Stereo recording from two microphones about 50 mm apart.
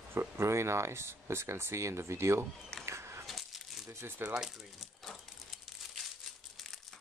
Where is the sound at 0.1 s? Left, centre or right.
Right.